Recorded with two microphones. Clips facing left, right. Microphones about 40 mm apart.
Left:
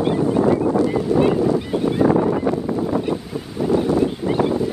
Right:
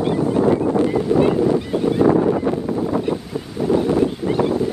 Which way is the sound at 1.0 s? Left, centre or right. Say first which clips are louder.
Right 1 dB; centre.